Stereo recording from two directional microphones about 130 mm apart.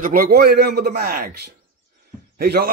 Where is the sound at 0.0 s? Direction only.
90° right.